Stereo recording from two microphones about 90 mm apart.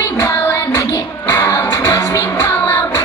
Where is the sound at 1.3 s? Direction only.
40° left (ahead or behind).